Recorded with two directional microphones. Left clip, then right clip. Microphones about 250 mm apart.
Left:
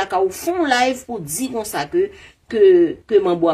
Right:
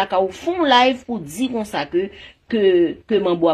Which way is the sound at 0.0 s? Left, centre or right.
Right.